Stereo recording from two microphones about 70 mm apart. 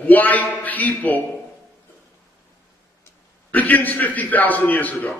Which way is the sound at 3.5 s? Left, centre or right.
Left.